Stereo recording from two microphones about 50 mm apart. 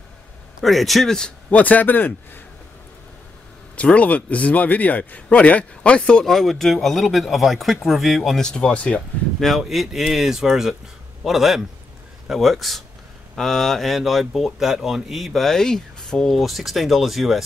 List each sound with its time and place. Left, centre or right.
0.6 s speech: centre
1.5 s a man's voice: left
3.7 s a man's voice: left
6.2 s speech: centre
8.4 s speech: centre
9.4 s speech: centre
16.3 s speech: centre